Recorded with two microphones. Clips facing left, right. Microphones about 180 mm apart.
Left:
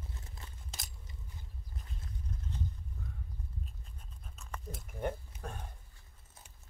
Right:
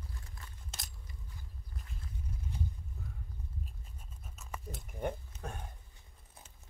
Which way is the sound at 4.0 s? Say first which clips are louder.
Right 1 dB; 5° right (ahead or behind).